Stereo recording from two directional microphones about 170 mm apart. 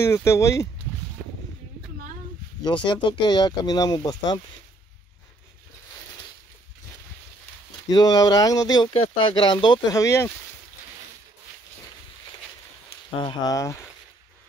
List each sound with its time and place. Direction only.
0.0 s speech: 15° left (ahead or behind)
1.2 s a sound: 5° left (ahead or behind)
2.9 s speech: 30° left (ahead or behind)
7.9 s speech: 25° left (ahead or behind)
13.1 s speech: 30° left (ahead or behind)